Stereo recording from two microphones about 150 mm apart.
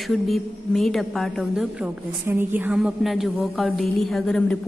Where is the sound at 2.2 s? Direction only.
15° right (ahead or behind).